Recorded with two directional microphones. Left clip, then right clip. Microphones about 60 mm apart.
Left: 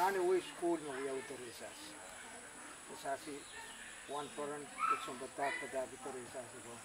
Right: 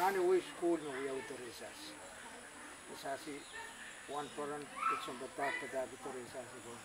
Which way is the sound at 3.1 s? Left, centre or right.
Right.